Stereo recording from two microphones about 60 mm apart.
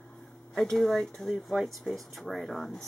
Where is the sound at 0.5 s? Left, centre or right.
Centre.